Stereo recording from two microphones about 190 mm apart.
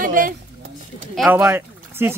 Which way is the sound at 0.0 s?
45° right (ahead or behind).